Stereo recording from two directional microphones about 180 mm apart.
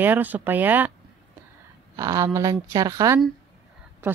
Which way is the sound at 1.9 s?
20° right (ahead or behind).